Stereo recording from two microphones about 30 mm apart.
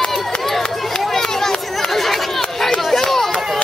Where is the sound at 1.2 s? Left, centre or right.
Centre.